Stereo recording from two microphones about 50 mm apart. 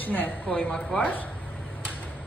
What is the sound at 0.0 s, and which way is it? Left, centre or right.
Speech, left.